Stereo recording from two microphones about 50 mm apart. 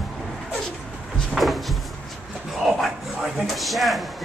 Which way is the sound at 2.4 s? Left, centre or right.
Centre.